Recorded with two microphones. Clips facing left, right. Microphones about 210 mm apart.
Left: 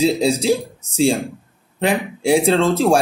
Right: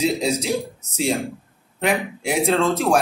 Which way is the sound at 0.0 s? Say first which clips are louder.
Left 5 dB; 30° left (ahead or behind).